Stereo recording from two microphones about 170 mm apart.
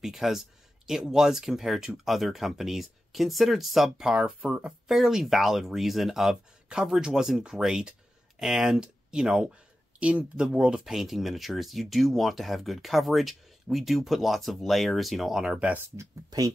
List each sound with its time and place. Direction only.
0.0 s speech: centre (ahead or behind)
16.3 s speech: 20° right (ahead or behind)